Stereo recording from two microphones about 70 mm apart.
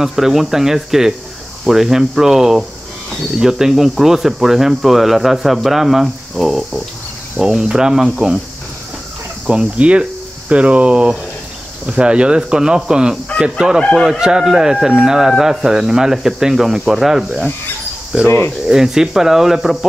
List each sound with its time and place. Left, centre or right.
0.0 s speech: centre
9.5 s speech: centre
13.9 s speech: centre
14.2 s speech: centre
18.2 s speech: left
18.7 s speech: centre